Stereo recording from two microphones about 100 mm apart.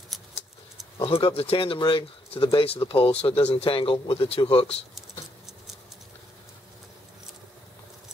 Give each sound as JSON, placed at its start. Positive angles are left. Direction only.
{"t": 0.1, "sound": "a sound", "side_deg": 0}
{"t": 0.9, "sound": "speech", "side_deg": 65}
{"t": 1.8, "sound": "speech", "side_deg": 60}
{"t": 2.9, "sound": "speech", "side_deg": 80}
{"t": 3.5, "sound": "speech", "side_deg": 70}